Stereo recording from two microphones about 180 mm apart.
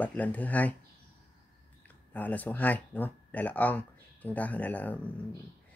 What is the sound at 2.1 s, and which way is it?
Speech, 10° left (ahead or behind).